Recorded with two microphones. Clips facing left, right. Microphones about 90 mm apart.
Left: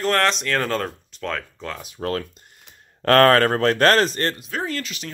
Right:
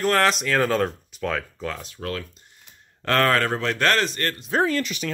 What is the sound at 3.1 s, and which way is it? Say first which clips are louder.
Speech: left 6 dB; 50° left (ahead or behind).